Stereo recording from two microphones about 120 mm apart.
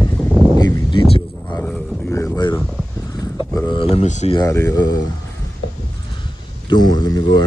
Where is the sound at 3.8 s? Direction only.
60° left (ahead or behind).